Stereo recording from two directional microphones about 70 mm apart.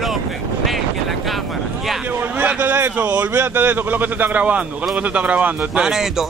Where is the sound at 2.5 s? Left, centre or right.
Right.